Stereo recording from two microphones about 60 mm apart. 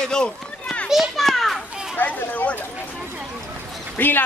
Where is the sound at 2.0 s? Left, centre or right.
Left.